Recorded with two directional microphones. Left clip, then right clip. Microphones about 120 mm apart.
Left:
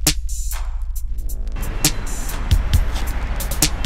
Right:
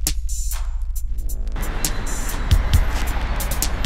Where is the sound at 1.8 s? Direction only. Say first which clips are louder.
Left 7 dB; centre (ahead or behind).